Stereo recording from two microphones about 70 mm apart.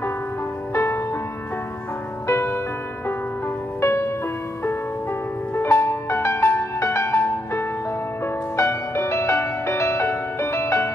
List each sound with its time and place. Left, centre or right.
0.7 s music: left
2.2 s music: left
3.8 s music: left
5.6 s music: left